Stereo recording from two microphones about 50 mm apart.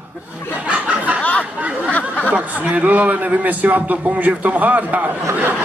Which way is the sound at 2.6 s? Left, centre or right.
Right.